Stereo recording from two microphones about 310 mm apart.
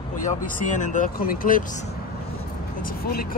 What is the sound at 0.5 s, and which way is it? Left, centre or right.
Speech, left.